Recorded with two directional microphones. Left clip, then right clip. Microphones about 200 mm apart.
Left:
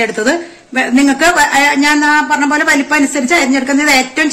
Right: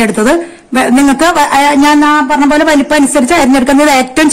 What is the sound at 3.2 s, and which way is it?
A woman's voice, 50° right (ahead or behind).